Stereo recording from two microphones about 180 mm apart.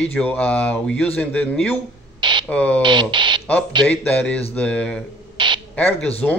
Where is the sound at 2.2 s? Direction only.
25° right (ahead or behind).